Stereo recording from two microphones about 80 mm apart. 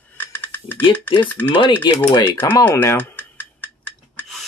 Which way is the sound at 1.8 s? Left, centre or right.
Left.